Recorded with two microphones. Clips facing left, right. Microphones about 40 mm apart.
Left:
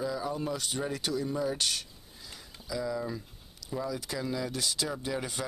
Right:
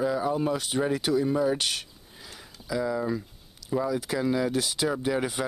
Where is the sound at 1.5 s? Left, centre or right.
Right.